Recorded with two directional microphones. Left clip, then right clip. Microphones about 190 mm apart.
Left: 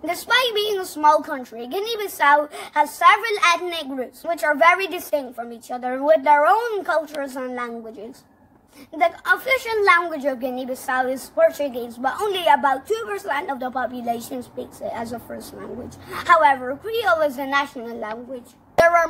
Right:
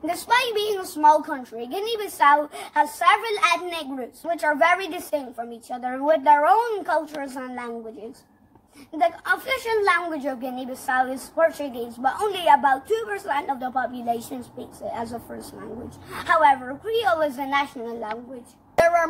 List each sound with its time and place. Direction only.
0.0 s a woman's voice: 10° left (ahead or behind)
8.9 s a woman's voice: 10° left (ahead or behind)
18.8 s a sound: 10° left (ahead or behind)